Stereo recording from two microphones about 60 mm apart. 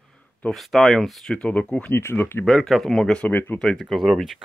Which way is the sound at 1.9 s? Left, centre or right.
Left.